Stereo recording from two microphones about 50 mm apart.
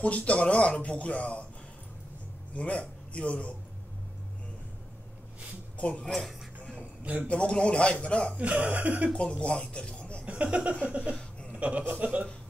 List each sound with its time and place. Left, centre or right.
0.0 s speech: left
2.5 s speech: left
5.8 s speech: left
7.2 s speech: left
8.4 s speech: right
9.1 s speech: left
10.2 s speech: right
11.1 s a sound: left
11.5 s chuckle: right
11.9 s speech: right